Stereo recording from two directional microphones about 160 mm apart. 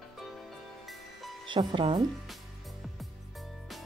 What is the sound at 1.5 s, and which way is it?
Speech, 30° right (ahead or behind).